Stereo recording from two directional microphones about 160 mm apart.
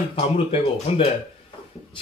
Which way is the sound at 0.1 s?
35° left (ahead or behind).